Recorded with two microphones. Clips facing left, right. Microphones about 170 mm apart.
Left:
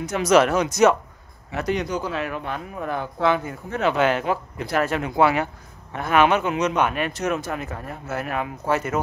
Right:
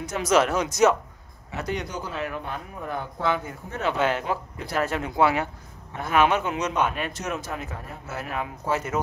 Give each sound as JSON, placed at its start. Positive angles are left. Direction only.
{"t": 0.0, "sound": "speech", "side_deg": 65}
{"t": 1.6, "sound": "speech", "side_deg": 90}